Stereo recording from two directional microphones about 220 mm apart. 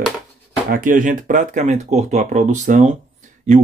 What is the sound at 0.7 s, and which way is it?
Speech, 40° right (ahead or behind).